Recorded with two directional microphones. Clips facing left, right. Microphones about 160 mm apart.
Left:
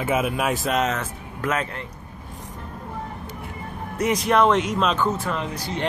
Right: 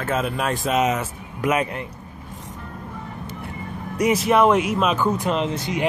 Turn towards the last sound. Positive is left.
turn(degrees=-20)  # may be behind; listen again after turning